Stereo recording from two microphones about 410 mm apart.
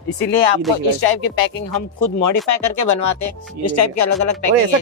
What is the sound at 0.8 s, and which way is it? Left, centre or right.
Speech, left.